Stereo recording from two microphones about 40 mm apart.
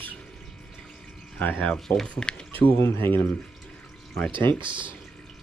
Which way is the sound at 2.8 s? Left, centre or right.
Left.